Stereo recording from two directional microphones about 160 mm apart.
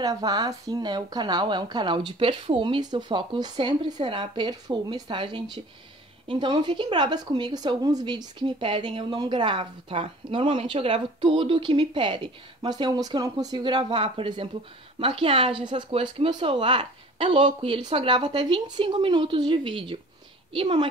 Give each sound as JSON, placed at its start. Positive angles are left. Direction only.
{"t": 0.0, "sound": "speech", "side_deg": -25}